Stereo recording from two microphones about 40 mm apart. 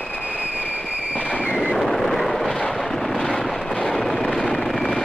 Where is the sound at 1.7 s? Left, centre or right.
Centre.